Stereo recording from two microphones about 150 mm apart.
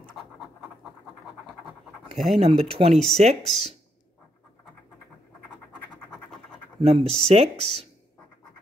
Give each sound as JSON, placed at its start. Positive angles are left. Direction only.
{"t": 0.2, "sound": "scratch", "side_deg": 0}
{"t": 1.2, "sound": "pant", "side_deg": 0}
{"t": 2.3, "sound": "speech", "side_deg": -40}
{"t": 6.8, "sound": "speech", "side_deg": -40}